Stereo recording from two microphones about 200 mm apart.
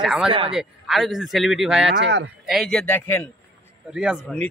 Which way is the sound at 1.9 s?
60° right (ahead or behind).